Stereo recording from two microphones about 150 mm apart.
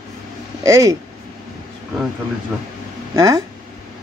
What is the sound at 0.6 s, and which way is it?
Speech, 20° right (ahead or behind).